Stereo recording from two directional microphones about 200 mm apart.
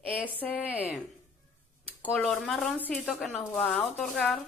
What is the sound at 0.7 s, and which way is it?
Speech, 10° left (ahead or behind).